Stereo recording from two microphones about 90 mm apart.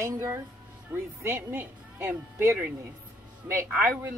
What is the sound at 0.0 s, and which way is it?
Speech, 30° right (ahead or behind).